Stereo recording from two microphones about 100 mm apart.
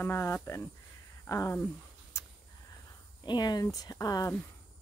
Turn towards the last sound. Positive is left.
turn(degrees=40)  # may be behind; listen again after turning